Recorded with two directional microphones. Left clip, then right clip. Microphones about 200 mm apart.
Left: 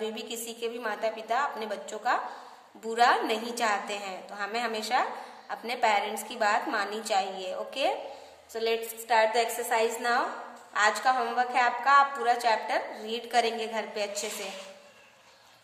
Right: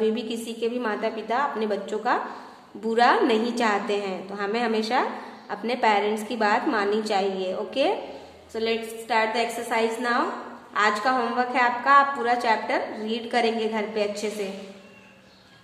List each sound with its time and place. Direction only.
0.0 s a woman's voice: 15° left (ahead or behind)